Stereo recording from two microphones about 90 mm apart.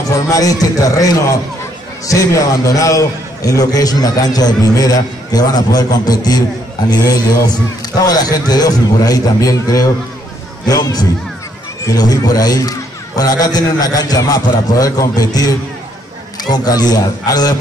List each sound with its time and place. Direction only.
0.3 s a man's voice: 40° left (ahead or behind)